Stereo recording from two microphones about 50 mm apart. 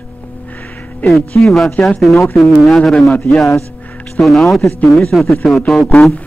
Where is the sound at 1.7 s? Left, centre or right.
Left.